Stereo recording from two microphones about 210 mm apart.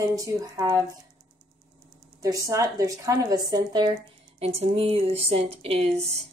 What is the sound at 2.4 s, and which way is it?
A woman's voice, 15° right (ahead or behind).